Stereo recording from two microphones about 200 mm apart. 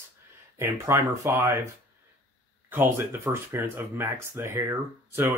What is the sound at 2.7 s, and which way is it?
Speech, 10° right (ahead or behind).